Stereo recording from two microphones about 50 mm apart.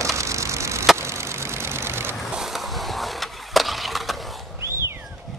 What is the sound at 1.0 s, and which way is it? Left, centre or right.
Vehicle, right.